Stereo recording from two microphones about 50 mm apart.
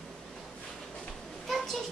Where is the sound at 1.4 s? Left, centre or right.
Centre.